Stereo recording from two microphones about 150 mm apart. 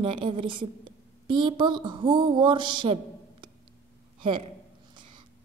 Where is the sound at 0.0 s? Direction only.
35° right (ahead or behind).